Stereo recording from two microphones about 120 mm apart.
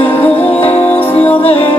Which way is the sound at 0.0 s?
15° left (ahead or behind).